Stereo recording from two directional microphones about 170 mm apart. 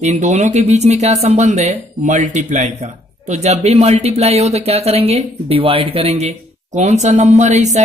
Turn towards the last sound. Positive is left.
turn(degrees=-40)  # may be behind; listen again after turning